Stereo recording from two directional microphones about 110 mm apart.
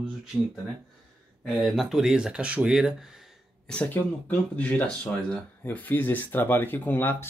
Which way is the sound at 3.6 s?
10° left (ahead or behind).